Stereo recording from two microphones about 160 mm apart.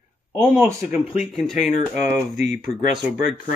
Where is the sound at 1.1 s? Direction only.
Centre (ahead or behind).